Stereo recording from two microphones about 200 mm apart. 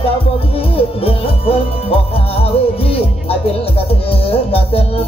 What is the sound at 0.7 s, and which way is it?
Music, 30° left (ahead or behind).